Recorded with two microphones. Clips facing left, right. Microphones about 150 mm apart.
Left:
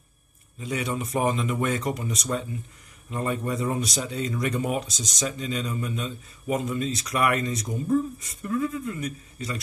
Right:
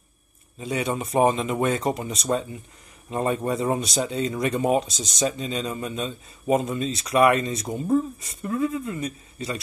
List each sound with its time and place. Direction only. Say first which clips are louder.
0.6 s speech: right 3 dB; 25° right (ahead or behind)